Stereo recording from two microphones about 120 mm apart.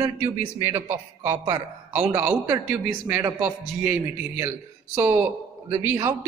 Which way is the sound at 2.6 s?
15° right (ahead or behind).